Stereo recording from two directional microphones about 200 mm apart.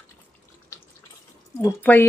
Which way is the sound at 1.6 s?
10° left (ahead or behind).